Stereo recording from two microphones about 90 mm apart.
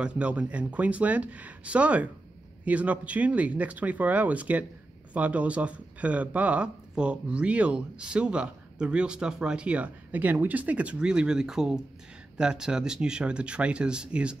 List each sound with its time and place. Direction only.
0.0 s speech: 15° right (ahead or behind)